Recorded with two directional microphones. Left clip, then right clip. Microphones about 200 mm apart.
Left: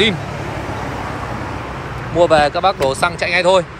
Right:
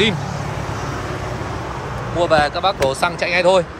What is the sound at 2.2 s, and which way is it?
Speech, centre (ahead or behind).